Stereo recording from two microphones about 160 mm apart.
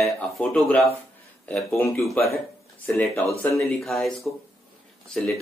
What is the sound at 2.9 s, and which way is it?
Speech, 10° left (ahead or behind).